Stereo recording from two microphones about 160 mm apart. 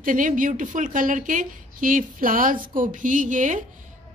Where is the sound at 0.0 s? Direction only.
55° right (ahead or behind).